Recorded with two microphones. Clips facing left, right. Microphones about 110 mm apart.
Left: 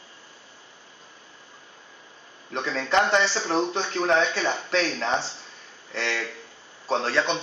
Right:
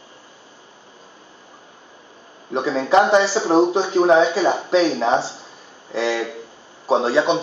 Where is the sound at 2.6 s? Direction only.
30° right (ahead or behind).